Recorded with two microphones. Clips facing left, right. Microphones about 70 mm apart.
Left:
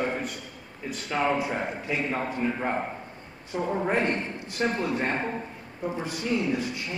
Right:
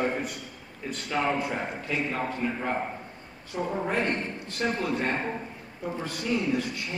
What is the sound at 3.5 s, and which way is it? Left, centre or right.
Speech, left.